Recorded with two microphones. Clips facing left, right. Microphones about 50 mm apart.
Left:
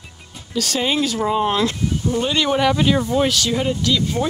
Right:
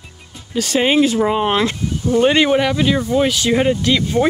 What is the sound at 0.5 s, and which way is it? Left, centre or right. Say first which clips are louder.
Speech: right 5 dB; right.